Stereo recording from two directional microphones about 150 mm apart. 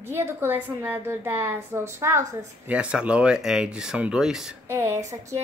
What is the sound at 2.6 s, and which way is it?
Speech, 10° right (ahead or behind).